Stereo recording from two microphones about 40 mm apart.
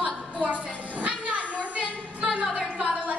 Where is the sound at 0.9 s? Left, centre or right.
Right.